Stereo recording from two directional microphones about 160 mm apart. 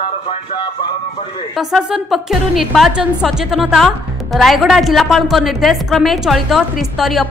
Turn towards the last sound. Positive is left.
turn(degrees=0)  # may be behind; listen again after turning